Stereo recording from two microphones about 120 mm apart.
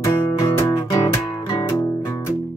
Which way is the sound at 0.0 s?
30° left (ahead or behind).